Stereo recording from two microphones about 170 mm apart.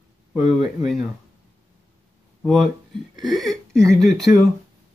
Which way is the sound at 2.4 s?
Centre (ahead or behind).